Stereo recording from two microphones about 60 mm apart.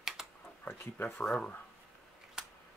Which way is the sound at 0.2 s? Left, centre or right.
Centre.